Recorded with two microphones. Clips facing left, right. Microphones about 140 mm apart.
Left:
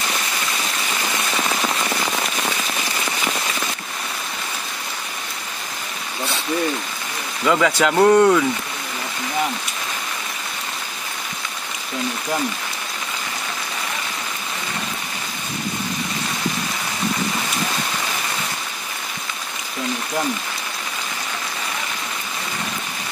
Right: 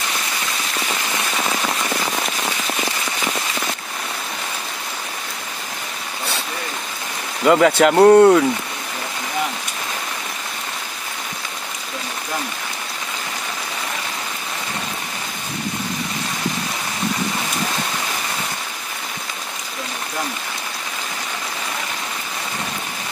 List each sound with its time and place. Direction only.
7.4 s speech: 40° right (ahead or behind)
7.9 s speech: 30° right (ahead or behind)